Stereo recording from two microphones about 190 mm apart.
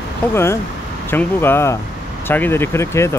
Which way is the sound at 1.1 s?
10° left (ahead or behind).